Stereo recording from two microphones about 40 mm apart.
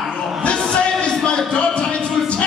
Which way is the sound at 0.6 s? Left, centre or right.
Left.